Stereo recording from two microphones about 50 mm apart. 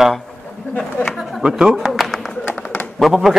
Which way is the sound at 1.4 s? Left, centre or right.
Centre.